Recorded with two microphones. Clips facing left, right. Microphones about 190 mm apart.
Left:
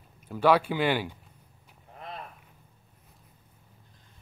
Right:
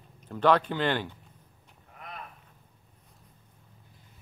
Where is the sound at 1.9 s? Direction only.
30° left (ahead or behind).